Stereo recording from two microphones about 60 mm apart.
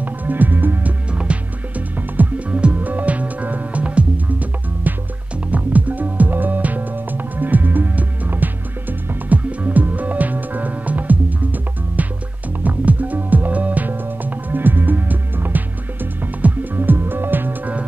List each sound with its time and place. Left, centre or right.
0.0 s music: right
1.1 s music: centre
12.6 s music: right